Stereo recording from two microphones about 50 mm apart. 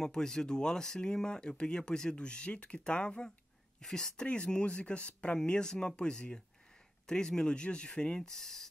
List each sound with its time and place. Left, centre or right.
0.0 s speech: centre